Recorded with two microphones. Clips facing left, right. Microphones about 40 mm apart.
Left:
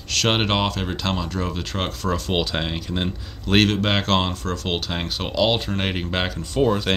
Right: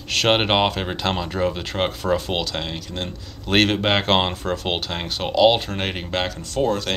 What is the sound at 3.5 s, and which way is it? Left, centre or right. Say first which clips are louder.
Speech: right 1 dB; centre.